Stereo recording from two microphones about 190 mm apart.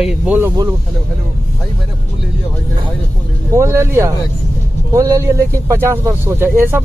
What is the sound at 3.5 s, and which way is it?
Speech, 15° right (ahead or behind).